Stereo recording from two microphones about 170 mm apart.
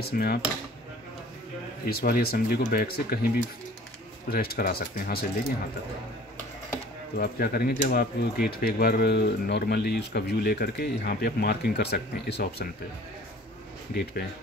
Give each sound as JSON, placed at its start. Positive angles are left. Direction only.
{"t": 0.0, "sound": "speech", "side_deg": 65}
{"t": 1.9, "sound": "speech", "side_deg": 65}
{"t": 7.2, "sound": "speech", "side_deg": 65}